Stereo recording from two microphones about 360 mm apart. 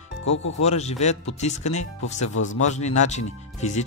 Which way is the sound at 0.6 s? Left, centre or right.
Centre.